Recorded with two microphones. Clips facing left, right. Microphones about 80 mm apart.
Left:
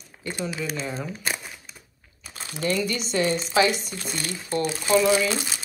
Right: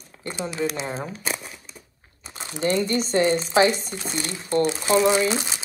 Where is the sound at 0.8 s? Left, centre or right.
Right.